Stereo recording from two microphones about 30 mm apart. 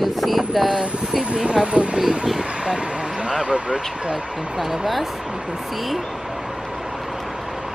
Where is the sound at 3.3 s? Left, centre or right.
Right.